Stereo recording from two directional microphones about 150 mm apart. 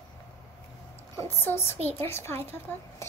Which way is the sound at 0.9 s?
15° left (ahead or behind).